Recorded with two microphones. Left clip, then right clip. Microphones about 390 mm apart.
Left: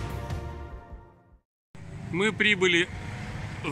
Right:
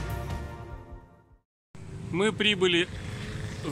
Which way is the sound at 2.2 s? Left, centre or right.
Centre.